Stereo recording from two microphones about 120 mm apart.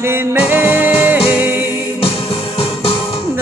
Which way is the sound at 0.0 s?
20° right (ahead or behind).